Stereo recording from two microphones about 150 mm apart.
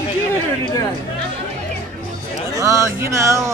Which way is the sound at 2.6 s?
20° right (ahead or behind).